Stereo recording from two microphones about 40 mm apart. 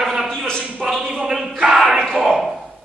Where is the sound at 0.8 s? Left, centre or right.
Right.